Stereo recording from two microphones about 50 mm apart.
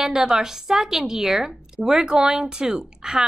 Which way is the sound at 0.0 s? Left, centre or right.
Centre.